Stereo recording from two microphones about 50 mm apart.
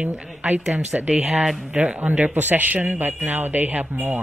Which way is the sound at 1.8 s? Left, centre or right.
Right.